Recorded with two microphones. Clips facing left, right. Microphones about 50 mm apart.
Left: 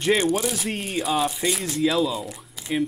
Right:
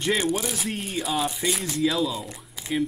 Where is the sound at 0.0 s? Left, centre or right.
Centre.